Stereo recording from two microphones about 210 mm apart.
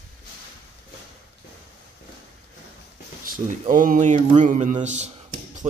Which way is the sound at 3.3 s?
40° right (ahead or behind).